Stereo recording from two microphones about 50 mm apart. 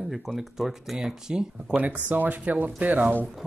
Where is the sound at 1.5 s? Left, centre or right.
Right.